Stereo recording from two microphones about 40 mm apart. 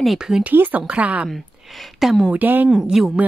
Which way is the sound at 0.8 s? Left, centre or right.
Right.